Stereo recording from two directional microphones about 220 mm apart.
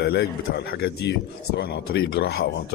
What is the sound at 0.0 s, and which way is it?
Speech, 45° left (ahead or behind).